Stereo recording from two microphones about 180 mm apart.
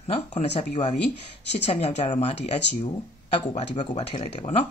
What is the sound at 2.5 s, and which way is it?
Speech, 70° left (ahead or behind).